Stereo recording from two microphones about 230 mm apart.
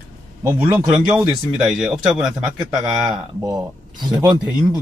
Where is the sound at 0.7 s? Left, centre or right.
Centre.